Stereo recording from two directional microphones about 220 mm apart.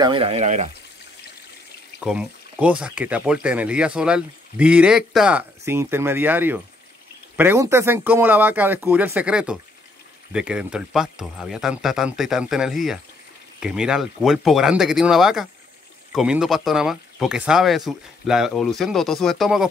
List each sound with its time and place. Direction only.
0.0 s speech: 25° right (ahead or behind)
2.0 s speech: 5° right (ahead or behind)